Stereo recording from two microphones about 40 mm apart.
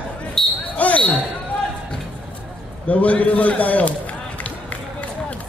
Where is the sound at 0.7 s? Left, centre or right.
Left.